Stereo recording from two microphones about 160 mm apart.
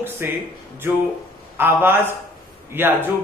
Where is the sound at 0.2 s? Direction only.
10° right (ahead or behind).